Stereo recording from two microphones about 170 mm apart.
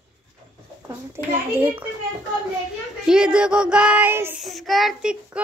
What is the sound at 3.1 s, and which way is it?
A child's voice, 5° right (ahead or behind).